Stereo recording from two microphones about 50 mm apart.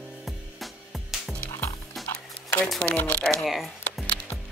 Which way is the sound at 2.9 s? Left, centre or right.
Left.